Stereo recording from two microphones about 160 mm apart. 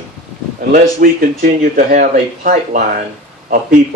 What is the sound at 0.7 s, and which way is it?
A man's voice, 65° right (ahead or behind).